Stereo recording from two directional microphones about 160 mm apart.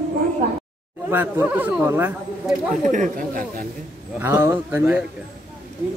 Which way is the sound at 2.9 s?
55° right (ahead or behind).